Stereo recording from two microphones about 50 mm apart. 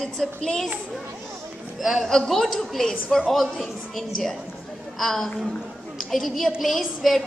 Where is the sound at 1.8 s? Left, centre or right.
Centre.